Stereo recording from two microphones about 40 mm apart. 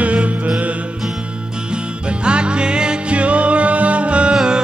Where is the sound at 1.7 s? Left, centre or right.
Right.